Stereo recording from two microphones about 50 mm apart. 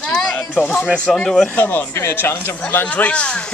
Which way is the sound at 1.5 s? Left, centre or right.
Left.